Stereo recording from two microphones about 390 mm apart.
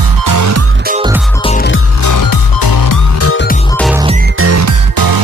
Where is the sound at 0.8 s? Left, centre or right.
Centre.